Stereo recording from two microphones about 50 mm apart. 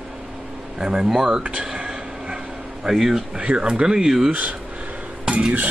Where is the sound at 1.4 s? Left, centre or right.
Centre.